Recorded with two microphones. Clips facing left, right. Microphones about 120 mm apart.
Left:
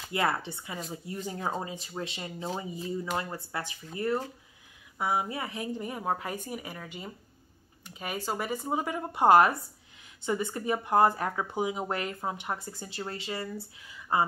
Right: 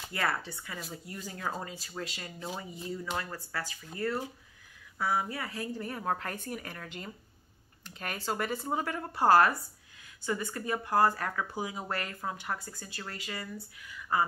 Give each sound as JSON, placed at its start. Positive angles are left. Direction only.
{"t": 0.1, "sound": "speech", "side_deg": 20}